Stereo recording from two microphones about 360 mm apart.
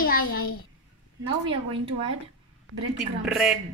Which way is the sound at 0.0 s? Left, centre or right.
Left.